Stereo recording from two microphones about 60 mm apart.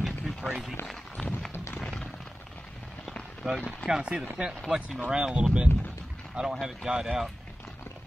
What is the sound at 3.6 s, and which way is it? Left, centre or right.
Speech, centre.